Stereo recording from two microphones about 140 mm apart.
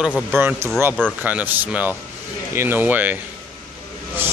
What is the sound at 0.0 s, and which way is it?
Speech, 5° right (ahead or behind).